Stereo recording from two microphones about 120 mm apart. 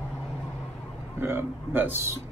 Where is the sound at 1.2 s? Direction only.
15° right (ahead or behind).